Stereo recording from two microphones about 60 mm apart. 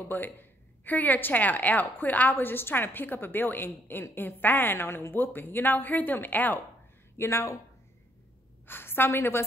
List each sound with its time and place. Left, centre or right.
0.1 s a woman's voice: left
2.3 s a woman's voice: left
7.2 s speech: left
8.6 s a woman's voice: left